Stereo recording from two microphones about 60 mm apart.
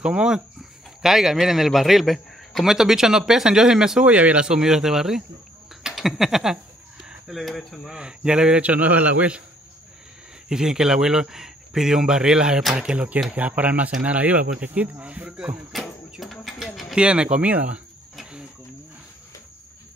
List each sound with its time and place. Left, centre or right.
0.0 s speech: centre
7.9 s a man's voice: centre
10.5 s a man's voice: centre
16.2 s a sound: centre
16.9 s a man's voice: centre
18.1 s a sound: centre